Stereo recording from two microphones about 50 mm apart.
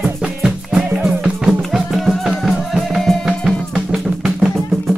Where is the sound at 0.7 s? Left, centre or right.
Centre.